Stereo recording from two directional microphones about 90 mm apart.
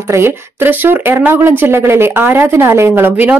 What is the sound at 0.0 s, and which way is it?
Speech, 30° right (ahead or behind).